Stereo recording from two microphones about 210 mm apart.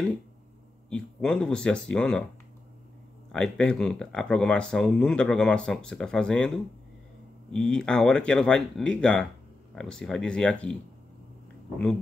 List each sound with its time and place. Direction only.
0.8 s speech: 5° left (ahead or behind)
3.3 s speech: 5° left (ahead or behind)
7.5 s speech: 5° left (ahead or behind)